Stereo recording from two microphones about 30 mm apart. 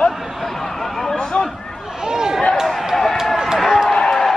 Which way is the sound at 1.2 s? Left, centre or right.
Left.